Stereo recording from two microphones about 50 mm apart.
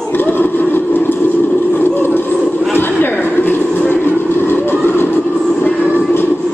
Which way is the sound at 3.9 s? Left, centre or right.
Left.